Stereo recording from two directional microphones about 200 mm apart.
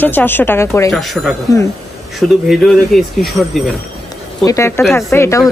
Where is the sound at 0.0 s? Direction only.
10° left (ahead or behind).